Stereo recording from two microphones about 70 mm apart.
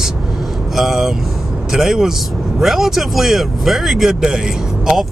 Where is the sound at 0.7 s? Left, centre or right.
Centre.